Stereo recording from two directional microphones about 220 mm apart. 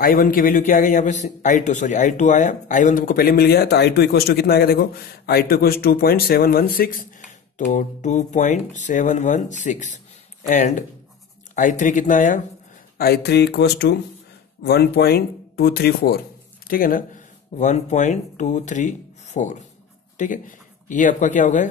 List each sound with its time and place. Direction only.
0.0 s a man's voice: 40° left (ahead or behind)